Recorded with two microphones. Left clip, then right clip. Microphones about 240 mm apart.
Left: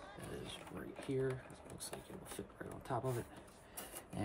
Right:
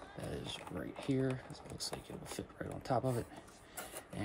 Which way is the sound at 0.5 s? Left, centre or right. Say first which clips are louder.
Right 5 dB; centre.